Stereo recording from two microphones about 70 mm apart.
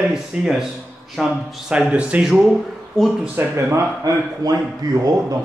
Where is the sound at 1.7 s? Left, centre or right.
Centre.